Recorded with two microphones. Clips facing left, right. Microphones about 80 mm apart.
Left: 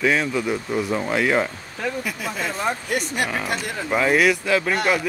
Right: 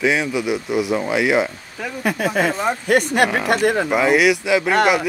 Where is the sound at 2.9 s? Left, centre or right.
Right.